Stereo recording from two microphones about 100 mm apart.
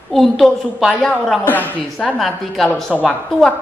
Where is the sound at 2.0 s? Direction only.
Centre (ahead or behind).